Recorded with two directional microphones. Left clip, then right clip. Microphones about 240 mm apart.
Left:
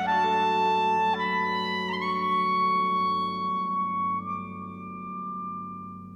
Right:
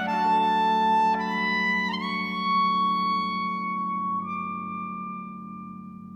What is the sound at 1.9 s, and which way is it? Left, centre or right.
Music, right.